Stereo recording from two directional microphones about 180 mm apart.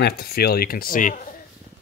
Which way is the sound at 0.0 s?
60° left (ahead or behind).